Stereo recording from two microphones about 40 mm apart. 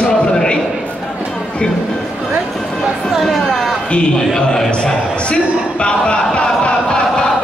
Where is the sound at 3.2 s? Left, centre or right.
Centre.